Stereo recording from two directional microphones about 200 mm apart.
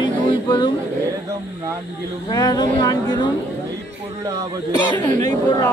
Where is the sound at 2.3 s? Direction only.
20° left (ahead or behind).